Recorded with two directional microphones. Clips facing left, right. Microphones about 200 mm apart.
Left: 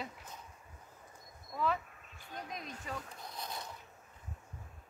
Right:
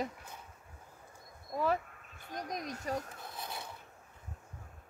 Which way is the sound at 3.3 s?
5° right (ahead or behind).